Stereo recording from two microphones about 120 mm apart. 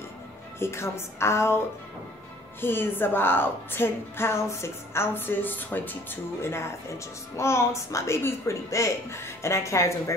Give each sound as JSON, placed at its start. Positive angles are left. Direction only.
{"t": 0.6, "sound": "speech", "side_deg": 20}
{"t": 2.6, "sound": "speech", "side_deg": 20}